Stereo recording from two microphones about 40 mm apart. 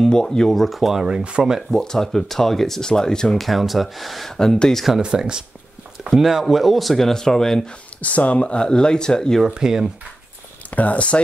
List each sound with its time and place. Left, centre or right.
0.1 s speech: centre
1.0 s speech: right
1.7 s speech: centre
3.3 s speech: centre
4.3 s speech: centre
4.7 s speech: centre
5.0 s speech: right
6.1 s speech: centre
8.0 s speech: left; by 9.4 s centre
9.5 s speech: centre
10.7 s speech: left